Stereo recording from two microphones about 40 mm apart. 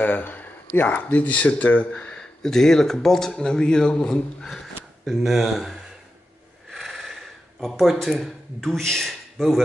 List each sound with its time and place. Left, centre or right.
0.0 s speech: left
2.1 s speech: centre
5.0 s speech: centre
6.7 s a sound: centre
7.6 s speech: centre